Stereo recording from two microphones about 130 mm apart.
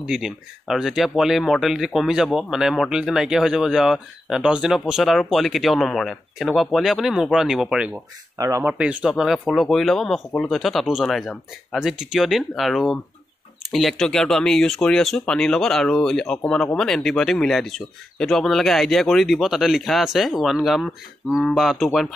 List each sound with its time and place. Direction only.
0.0 s speech: 5° right (ahead or behind)
8.4 s speech: 25° right (ahead or behind)
8.6 s speech: 10° right (ahead or behind)